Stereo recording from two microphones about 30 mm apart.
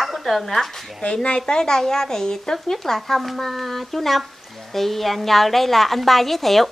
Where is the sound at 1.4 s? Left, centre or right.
Left.